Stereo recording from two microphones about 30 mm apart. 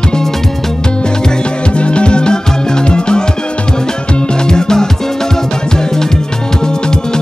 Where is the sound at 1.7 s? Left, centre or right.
Left.